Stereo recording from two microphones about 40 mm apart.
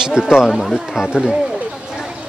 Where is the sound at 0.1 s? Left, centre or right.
Centre.